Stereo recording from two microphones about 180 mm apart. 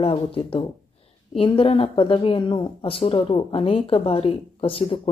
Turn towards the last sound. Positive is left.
turn(degrees=30)  # may be behind; listen again after turning